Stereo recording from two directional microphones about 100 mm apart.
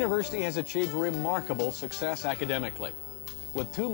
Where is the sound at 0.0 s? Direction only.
10° left (ahead or behind).